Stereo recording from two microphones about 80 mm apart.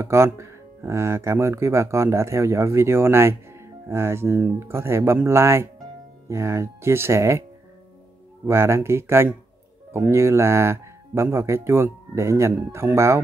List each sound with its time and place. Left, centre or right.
0.0 s speech: right
8.5 s speech: right